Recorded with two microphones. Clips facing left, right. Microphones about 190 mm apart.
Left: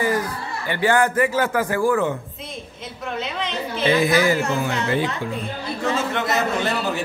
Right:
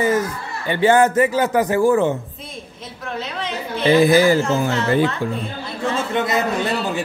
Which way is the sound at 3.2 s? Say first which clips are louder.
Right 1 dB; centre (ahead or behind).